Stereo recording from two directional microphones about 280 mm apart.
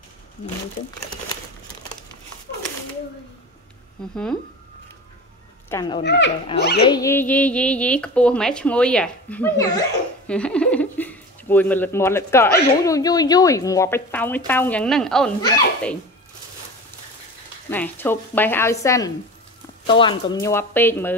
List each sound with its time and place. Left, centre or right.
5.7 s speech: centre
6.0 s speech: left
6.9 s speech: centre
17.6 s speech: centre